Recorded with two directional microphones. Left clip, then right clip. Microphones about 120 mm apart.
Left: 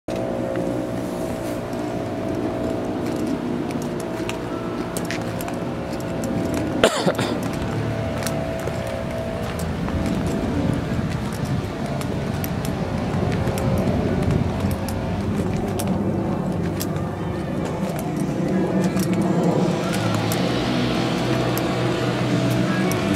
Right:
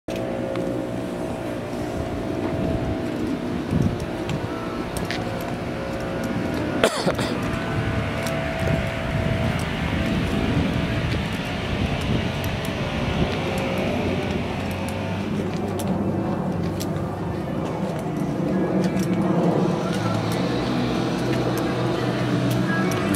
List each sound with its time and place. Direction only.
6.8 s cough: 5° left (ahead or behind)
20.3 s vehicle: 25° left (ahead or behind)